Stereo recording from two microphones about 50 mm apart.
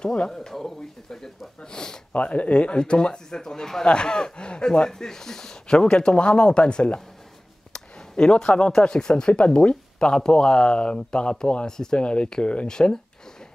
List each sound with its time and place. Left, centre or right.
0.0 s speech: centre
2.1 s speech: left
7.7 s a sound: centre
8.7 s speech: centre